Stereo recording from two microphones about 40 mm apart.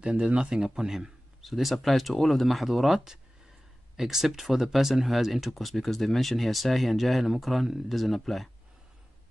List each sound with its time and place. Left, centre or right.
0.0 s speech: right
0.7 s speech: centre
1.4 s speech: centre